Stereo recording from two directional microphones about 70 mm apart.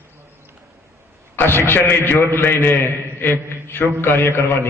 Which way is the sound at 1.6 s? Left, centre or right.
Left.